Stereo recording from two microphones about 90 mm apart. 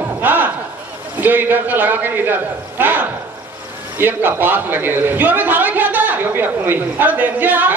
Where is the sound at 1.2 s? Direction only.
20° right (ahead or behind).